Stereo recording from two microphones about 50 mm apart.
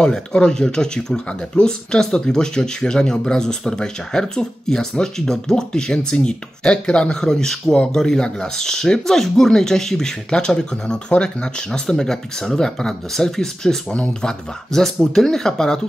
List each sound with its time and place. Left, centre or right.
0.0 s speech: centre
15.1 s speech: centre